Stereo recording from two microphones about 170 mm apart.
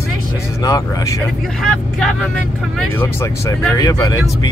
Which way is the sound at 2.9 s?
10° left (ahead or behind).